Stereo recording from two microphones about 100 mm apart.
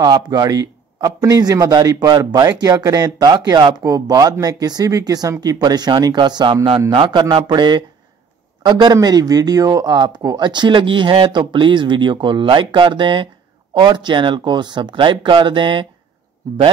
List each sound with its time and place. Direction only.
0.0 s a man's voice: 45° right (ahead or behind)
8.9 s speech: 40° right (ahead or behind)